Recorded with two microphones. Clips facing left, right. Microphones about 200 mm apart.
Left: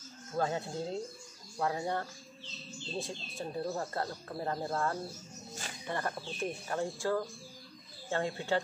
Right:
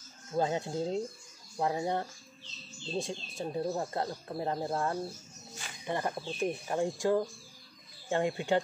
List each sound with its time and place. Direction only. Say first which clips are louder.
0.4 s speech: right 3 dB; 20° right (ahead or behind)